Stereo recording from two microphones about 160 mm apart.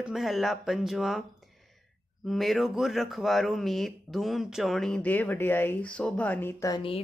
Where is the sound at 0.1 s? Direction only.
Centre (ahead or behind).